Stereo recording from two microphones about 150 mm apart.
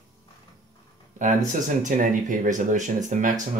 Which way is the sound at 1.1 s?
55° right (ahead or behind).